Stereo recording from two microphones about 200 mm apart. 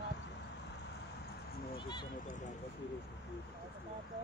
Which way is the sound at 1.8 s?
20° left (ahead or behind).